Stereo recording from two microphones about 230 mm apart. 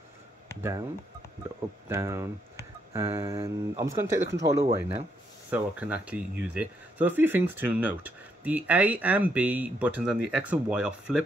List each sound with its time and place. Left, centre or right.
0.6 s speech: centre
4.3 s speech: right
5.5 s speech: centre